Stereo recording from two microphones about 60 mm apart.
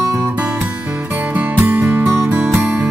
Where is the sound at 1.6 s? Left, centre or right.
Right.